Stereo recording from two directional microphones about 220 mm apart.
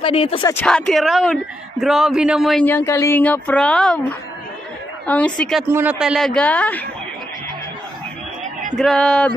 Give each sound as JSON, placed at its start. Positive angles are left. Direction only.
{"t": 0.0, "sound": "speech", "side_deg": 25}
{"t": 0.5, "sound": "a man's voice", "side_deg": 5}
{"t": 5.0, "sound": "a man's voice", "side_deg": 5}
{"t": 5.7, "sound": "a man's voice", "side_deg": -10}
{"t": 8.7, "sound": "a man's voice", "side_deg": 0}